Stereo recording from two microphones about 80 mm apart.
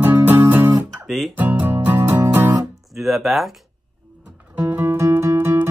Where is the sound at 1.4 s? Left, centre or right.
Right.